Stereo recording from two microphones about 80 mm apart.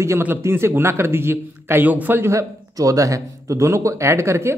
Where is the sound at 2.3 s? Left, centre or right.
Right.